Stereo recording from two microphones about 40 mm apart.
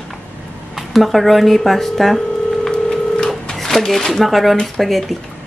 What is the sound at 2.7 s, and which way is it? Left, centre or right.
Telephone dialing, centre.